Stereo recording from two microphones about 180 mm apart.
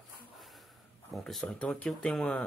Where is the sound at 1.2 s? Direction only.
5° left (ahead or behind).